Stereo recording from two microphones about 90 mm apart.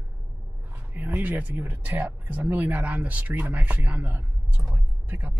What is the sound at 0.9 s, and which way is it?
Speech, 20° right (ahead or behind).